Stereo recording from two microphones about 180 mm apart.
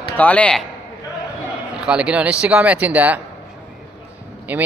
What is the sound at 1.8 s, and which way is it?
Speech, 5° right (ahead or behind).